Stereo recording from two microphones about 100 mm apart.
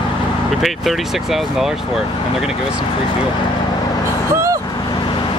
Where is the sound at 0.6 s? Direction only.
Centre (ahead or behind).